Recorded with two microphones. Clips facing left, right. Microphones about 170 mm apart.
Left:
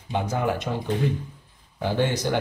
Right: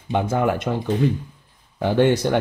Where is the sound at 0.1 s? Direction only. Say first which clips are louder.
Right 5 dB; 55° right (ahead or behind).